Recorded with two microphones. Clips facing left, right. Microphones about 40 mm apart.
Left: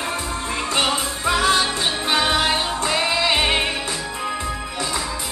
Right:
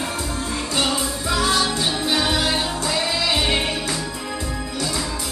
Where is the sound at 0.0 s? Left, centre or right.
Left.